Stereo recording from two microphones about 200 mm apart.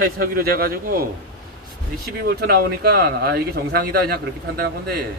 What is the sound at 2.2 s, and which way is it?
Speech, 50° right (ahead or behind).